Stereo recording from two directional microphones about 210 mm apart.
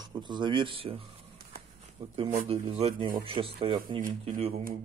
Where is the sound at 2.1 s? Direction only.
25° right (ahead or behind).